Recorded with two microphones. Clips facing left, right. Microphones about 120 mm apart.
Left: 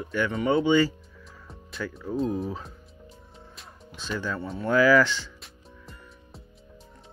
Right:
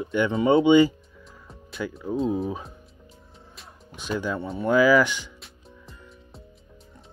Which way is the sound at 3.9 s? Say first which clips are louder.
Right 3 dB; 15° right (ahead or behind).